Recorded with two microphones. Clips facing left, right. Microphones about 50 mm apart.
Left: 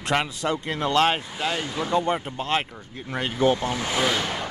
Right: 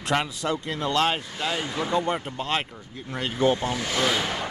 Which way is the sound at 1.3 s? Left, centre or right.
Centre.